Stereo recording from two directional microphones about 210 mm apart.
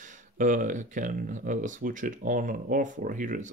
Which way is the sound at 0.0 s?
35° right (ahead or behind).